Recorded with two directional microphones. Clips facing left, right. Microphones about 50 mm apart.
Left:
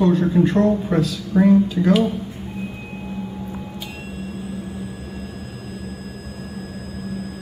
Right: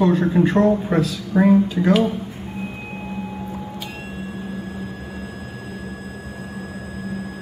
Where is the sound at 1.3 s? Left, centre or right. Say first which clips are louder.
Even; centre.